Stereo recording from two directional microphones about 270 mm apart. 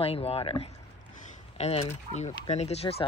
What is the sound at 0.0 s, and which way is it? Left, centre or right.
Speech, left.